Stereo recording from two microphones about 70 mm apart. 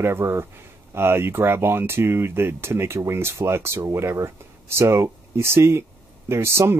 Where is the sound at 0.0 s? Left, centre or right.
Right.